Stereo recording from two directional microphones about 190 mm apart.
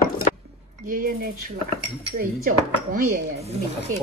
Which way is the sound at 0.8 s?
50° right (ahead or behind).